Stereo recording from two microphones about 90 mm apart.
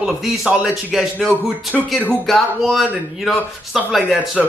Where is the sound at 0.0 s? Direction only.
5° right (ahead or behind).